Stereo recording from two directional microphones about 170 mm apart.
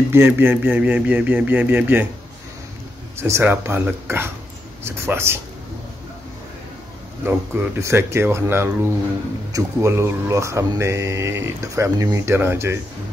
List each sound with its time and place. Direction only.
0.1 s speech: 10° right (ahead or behind)
3.2 s speech: 15° right (ahead or behind)
7.2 s speech: 10° right (ahead or behind)